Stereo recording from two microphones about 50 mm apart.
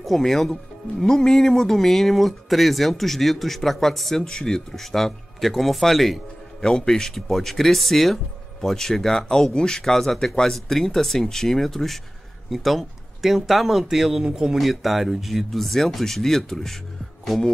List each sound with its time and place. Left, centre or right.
0.0 s speech: centre
6.6 s speech: centre
14.5 s speech: centre